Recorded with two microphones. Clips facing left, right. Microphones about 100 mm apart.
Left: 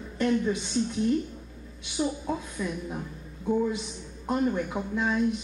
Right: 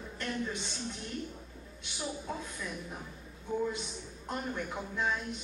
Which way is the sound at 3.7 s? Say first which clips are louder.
Left 6 dB; 5° left (ahead or behind).